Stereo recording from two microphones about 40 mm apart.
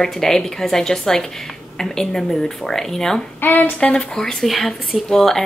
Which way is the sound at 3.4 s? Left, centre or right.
Left.